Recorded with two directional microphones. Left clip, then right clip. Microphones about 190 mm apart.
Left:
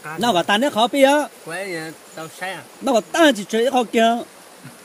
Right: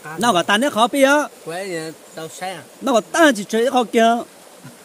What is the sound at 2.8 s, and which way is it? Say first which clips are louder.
Speech: right 1 dB; centre (ahead or behind).